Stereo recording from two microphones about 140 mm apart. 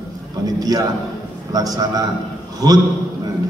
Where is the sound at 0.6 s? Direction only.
25° right (ahead or behind).